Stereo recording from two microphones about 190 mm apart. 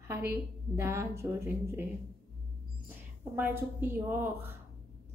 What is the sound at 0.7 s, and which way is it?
A woman's voice, 15° right (ahead or behind).